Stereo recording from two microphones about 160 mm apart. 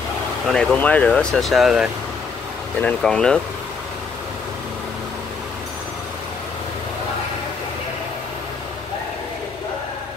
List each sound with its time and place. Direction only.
0.5 s speech: 5° left (ahead or behind)